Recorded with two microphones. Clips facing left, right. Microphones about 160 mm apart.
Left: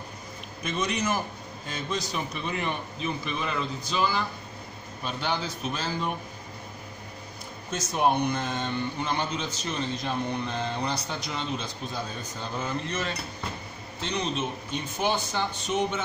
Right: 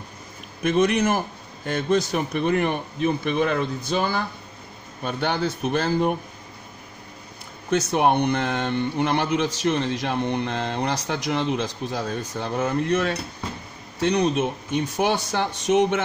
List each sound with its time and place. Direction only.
0.7 s a man's voice: 55° right (ahead or behind)
7.7 s speech: 65° right (ahead or behind); by 16.0 s 85° right